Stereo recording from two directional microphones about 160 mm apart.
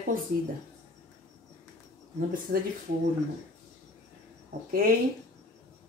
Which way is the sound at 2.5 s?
70° right (ahead or behind).